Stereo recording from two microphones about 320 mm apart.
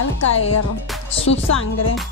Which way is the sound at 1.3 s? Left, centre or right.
Left.